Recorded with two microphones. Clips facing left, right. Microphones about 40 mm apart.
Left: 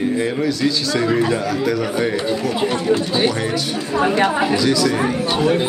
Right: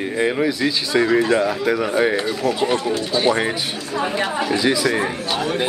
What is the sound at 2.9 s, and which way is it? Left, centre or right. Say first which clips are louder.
Speech: left 3 dB; centre.